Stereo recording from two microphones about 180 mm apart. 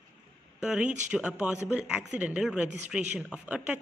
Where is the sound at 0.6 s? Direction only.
5° right (ahead or behind).